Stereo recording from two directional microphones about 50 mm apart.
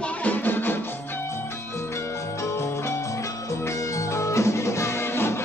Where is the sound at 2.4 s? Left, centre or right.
Left.